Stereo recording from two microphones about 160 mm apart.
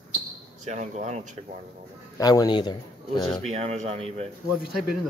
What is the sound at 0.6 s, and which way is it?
Speech, 45° right (ahead or behind).